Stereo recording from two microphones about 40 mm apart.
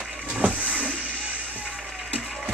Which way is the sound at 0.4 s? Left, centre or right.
Right.